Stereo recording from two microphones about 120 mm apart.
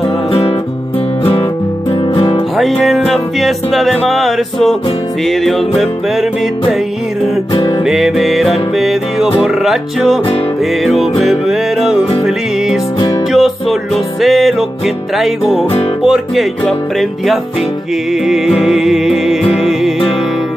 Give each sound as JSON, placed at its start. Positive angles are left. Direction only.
{"t": 0.3, "sound": "music", "side_deg": 55}
{"t": 1.9, "sound": "music", "side_deg": 50}
{"t": 2.5, "sound": "music", "side_deg": 0}
{"t": 7.8, "sound": "music", "side_deg": 0}
{"t": 13.3, "sound": "music", "side_deg": 0}
{"t": 18.2, "sound": "music", "side_deg": 0}